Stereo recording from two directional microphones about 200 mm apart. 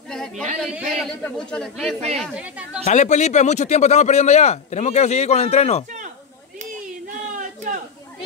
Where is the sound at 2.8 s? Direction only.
35° left (ahead or behind).